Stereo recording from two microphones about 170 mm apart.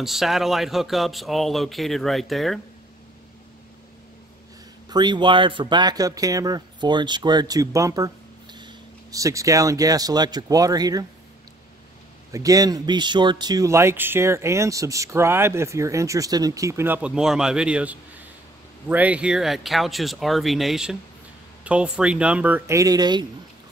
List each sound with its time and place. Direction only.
0.0 s speech: centre (ahead or behind)
4.8 s speech: 25° right (ahead or behind)
12.3 s speech: 20° right (ahead or behind)